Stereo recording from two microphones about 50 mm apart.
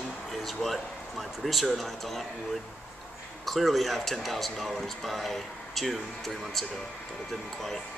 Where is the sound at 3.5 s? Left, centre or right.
Centre.